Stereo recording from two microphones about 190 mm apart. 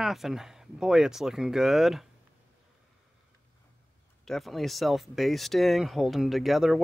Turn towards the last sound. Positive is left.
turn(degrees=0)  # may be behind; listen again after turning